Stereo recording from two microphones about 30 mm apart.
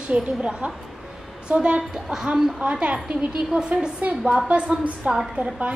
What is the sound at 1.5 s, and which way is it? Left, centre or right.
Speech, right.